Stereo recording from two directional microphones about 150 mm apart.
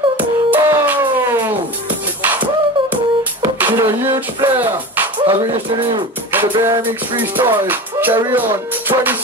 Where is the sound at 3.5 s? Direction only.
15° right (ahead or behind).